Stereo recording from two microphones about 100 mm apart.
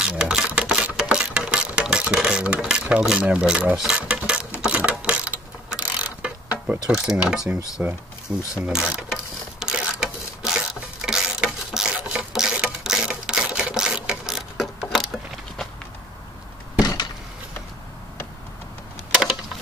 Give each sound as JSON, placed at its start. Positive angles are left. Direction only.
{"t": 0.0, "sound": "music", "side_deg": -10}
{"t": 4.6, "sound": "mechanisms", "side_deg": -10}
{"t": 7.8, "sound": "speech", "side_deg": -10}
{"t": 8.6, "sound": "mechanisms", "side_deg": -5}
{"t": 16.8, "sound": "a sound", "side_deg": 45}